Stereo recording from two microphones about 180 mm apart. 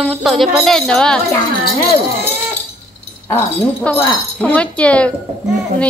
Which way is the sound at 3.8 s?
10° left (ahead or behind).